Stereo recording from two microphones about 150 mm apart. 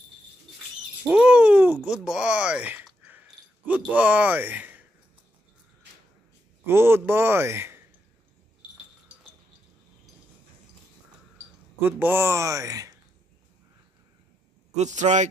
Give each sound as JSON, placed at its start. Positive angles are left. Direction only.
{"t": 1.0, "sound": "a sound", "side_deg": -10}
{"t": 1.9, "sound": "speech", "side_deg": -5}
{"t": 6.6, "sound": "a man's voice", "side_deg": -15}
{"t": 11.8, "sound": "speech", "side_deg": -15}
{"t": 14.8, "sound": "a man's voice", "side_deg": -50}